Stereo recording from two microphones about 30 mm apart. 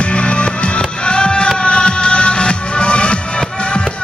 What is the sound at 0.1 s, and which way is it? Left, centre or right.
Music, left.